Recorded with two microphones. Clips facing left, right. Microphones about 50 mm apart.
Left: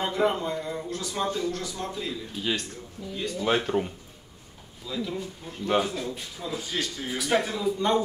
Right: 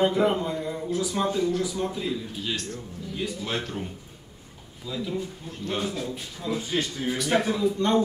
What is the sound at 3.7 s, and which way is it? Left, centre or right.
Speech, left.